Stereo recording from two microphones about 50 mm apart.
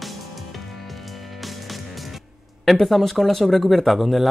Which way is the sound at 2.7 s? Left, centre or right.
Centre.